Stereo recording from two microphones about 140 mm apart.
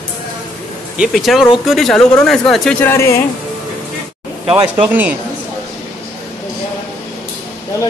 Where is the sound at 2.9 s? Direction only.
20° left (ahead or behind).